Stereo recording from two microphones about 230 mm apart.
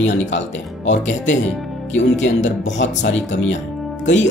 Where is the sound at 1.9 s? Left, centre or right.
Left.